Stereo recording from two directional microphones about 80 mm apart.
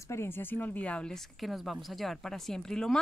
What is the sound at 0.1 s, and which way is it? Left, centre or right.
A woman's voice, left.